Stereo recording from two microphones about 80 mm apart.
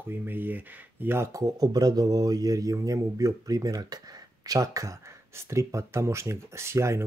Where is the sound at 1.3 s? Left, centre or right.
Right.